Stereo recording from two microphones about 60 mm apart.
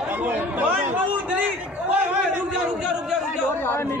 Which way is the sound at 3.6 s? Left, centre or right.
Left.